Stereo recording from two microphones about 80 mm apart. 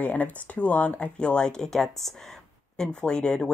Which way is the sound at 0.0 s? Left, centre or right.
Centre.